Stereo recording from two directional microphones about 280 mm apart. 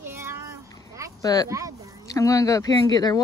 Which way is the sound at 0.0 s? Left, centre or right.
Centre.